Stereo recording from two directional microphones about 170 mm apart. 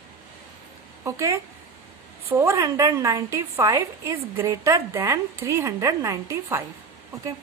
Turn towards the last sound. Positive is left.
turn(degrees=-15)  # may be behind; listen again after turning